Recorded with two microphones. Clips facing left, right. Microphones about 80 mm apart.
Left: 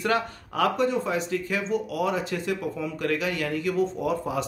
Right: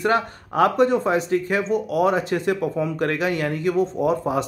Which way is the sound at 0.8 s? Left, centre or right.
Right.